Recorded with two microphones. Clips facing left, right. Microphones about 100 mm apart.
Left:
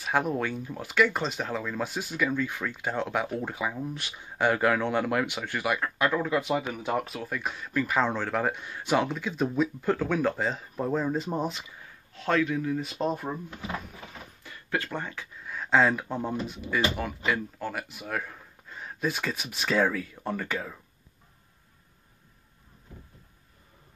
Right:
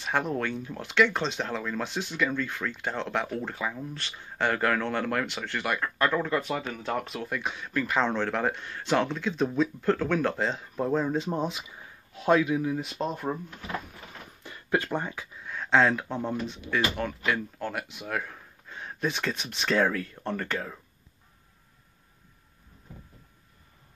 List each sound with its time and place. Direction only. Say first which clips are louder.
0.0 s speech: left 1 dB; 10° left (ahead or behind)
12.1 s speech: right 3 dB; 15° right (ahead or behind)
12.9 s speech: left 2 dB; 5° left (ahead or behind)
14.4 s speech: right 4 dB; 20° right (ahead or behind)
15.4 s speech: even; 5° left (ahead or behind)